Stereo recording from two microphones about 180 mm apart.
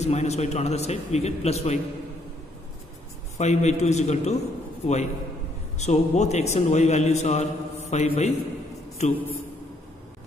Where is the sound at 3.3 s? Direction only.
40° left (ahead or behind).